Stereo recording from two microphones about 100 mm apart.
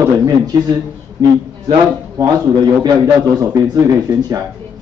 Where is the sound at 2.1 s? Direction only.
45° right (ahead or behind).